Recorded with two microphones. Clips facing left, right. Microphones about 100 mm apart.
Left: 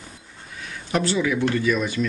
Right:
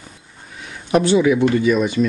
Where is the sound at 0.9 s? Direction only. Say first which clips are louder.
Right 8 dB; 20° right (ahead or behind).